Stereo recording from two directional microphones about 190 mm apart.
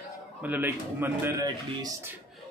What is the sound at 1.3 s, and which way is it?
Speech, 20° right (ahead or behind).